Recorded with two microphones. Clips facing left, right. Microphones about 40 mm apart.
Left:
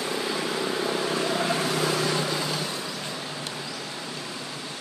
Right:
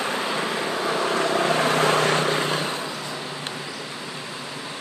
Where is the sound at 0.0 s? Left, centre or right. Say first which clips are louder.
Right 3 dB; right.